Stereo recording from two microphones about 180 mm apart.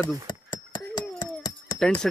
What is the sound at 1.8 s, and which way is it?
Speech, 5° left (ahead or behind).